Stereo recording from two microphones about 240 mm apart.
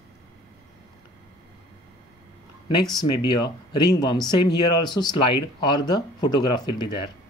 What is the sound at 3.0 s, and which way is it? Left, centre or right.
Speech, centre.